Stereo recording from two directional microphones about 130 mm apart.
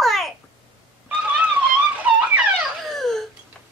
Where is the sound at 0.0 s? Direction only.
Centre (ahead or behind).